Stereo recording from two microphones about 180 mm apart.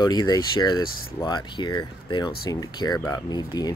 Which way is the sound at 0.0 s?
20° left (ahead or behind).